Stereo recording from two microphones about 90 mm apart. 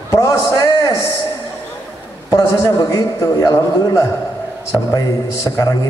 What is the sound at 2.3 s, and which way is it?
A man's voice, 40° left (ahead or behind).